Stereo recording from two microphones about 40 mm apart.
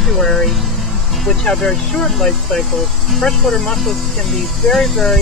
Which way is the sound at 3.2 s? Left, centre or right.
Centre.